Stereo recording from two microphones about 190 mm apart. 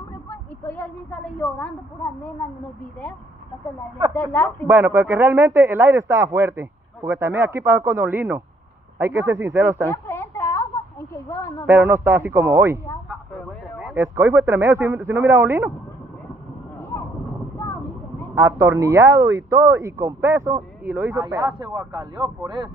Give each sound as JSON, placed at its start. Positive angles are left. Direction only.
{"t": 0.3, "sound": "a sound", "side_deg": 10}
{"t": 4.1, "sound": "speech", "side_deg": 10}
{"t": 4.6, "sound": "speech", "side_deg": -10}
{"t": 9.8, "sound": "a sound", "side_deg": 10}
{"t": 11.2, "sound": "speech", "side_deg": 15}
{"t": 11.6, "sound": "speech", "side_deg": -10}
{"t": 18.3, "sound": "speech", "side_deg": -15}